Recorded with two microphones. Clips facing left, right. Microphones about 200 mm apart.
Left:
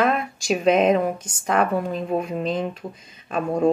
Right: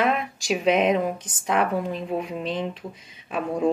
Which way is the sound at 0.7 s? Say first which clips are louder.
Left 3 dB; 45° left (ahead or behind).